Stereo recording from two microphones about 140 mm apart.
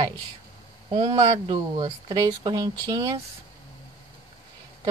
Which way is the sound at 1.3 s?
30° right (ahead or behind).